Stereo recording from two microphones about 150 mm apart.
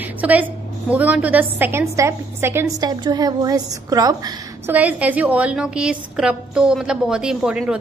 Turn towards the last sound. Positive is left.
turn(degrees=-5)  # may be behind; listen again after turning